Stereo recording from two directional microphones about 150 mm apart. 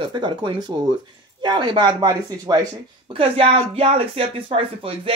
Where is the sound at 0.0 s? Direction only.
30° right (ahead or behind).